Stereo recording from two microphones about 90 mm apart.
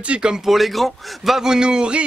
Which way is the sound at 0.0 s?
10° right (ahead or behind).